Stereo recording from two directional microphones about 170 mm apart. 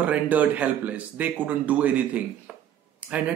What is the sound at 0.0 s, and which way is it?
Speech, 10° right (ahead or behind).